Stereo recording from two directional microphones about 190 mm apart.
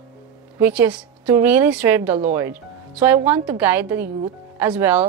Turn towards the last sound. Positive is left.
turn(degrees=-10)  # may be behind; listen again after turning